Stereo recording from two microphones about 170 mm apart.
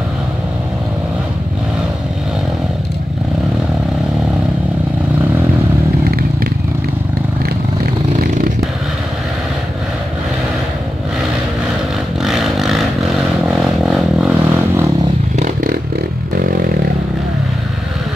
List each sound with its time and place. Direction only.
12.2 s vehicle: centre (ahead or behind)
13.8 s vehicle: 5° right (ahead or behind)
15.3 s a sound: 50° right (ahead or behind)
16.3 s vehicle: 60° right (ahead or behind)